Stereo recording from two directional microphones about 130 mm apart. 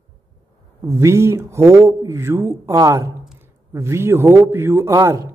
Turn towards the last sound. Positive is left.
turn(degrees=-25)  # may be behind; listen again after turning